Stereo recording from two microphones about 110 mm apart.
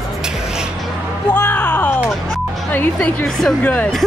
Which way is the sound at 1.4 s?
15° left (ahead or behind).